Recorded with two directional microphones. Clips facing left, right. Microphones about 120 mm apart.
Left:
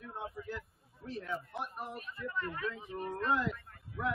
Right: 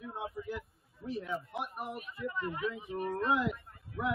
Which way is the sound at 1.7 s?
10° right (ahead or behind).